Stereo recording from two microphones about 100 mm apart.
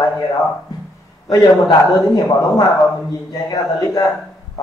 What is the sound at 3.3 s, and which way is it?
Speech, 40° left (ahead or behind).